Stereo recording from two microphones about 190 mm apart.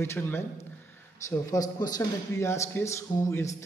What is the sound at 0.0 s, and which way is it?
A man's voice, 10° left (ahead or behind).